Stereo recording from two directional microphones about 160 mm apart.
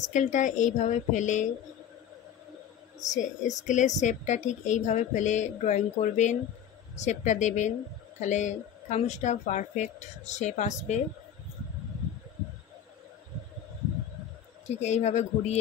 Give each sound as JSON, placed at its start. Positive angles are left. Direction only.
{"t": 0.0, "sound": "a woman's voice", "side_deg": 50}
{"t": 3.0, "sound": "a woman's voice", "side_deg": 50}
{"t": 14.8, "sound": "a woman's voice", "side_deg": 45}